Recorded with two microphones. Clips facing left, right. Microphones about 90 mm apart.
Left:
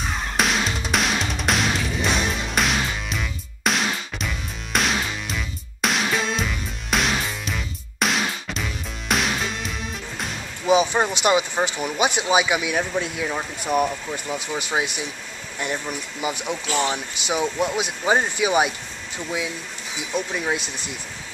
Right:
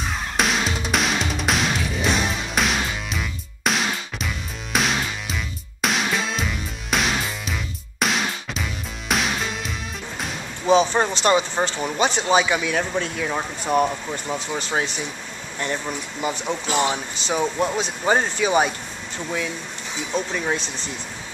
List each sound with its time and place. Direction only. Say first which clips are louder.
0.0 s music: even; centre (ahead or behind)
10.7 s speech: right 1 dB; 10° left (ahead or behind)
14.3 s speech: even; 5° left (ahead or behind)
16.2 s speech: right 1 dB; 10° left (ahead or behind)
16.6 s speech: right 2 dB; 15° right (ahead or behind)
16.9 s speech: right 1 dB; 10° left (ahead or behind)
20.0 s speech: right 1 dB; 5° left (ahead or behind)